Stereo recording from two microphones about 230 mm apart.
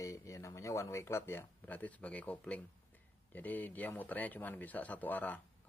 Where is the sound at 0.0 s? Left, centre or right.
Centre.